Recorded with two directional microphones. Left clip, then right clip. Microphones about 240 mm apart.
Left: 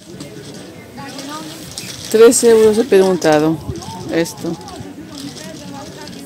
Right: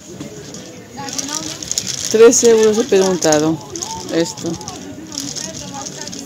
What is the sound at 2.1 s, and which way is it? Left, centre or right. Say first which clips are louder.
Speech: left 1 dB; centre.